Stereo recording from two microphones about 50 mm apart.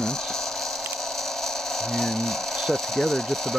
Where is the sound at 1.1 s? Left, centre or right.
Centre.